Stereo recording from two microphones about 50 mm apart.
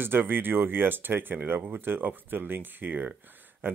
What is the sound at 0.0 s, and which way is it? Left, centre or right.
Speech, right.